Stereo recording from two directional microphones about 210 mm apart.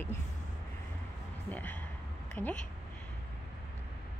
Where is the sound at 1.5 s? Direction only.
10° left (ahead or behind).